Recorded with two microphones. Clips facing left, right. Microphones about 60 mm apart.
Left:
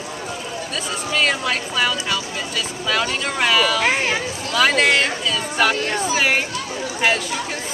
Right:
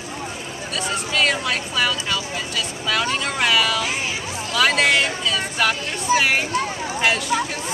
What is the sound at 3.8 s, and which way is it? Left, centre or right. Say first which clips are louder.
Speech: left 5 dB; left.